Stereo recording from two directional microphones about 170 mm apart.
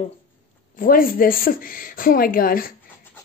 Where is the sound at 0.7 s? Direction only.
55° left (ahead or behind).